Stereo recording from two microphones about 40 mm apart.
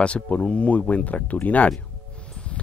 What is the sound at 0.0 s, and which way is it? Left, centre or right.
Speech, left.